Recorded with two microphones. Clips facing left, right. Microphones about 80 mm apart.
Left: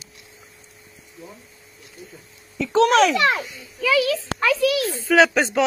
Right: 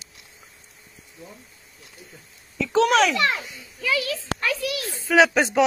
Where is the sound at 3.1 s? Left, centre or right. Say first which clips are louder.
Left 4 dB; left.